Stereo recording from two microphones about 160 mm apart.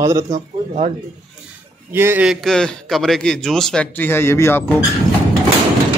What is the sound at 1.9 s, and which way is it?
Speech, 15° right (ahead or behind).